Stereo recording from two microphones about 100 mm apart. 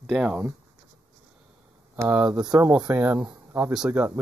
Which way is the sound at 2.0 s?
10° right (ahead or behind).